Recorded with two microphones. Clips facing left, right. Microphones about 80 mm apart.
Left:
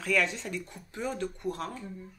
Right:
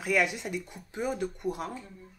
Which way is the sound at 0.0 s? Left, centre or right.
Centre.